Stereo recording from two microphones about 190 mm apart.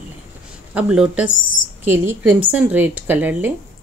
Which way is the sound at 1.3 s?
85° left.